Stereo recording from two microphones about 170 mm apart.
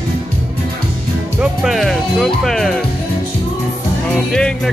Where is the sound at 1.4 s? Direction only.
Centre (ahead or behind).